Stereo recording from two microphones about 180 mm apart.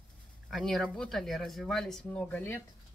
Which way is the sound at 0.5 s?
Centre (ahead or behind).